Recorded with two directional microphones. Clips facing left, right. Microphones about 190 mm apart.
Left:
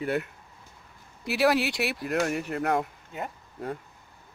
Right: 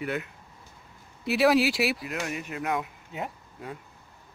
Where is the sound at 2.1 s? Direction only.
45° left (ahead or behind).